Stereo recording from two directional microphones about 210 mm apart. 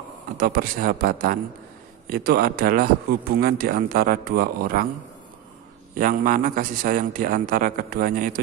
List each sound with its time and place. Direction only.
0.4 s a man's voice: 45° right (ahead or behind)
5.9 s a man's voice: 40° right (ahead or behind)